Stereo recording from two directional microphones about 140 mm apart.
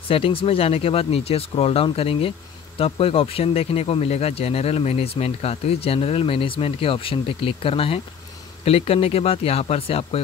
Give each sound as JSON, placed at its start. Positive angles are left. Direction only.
{"t": 0.1, "sound": "speech", "side_deg": 40}